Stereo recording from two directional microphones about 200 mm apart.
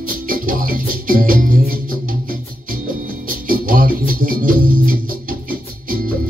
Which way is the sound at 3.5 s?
45° right (ahead or behind).